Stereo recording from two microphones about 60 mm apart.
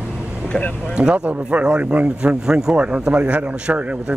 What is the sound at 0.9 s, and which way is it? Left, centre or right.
A man's voice, centre.